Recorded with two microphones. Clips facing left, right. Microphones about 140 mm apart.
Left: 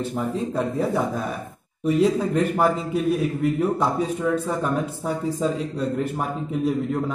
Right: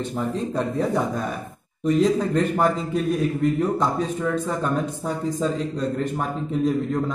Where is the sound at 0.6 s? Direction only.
5° left (ahead or behind).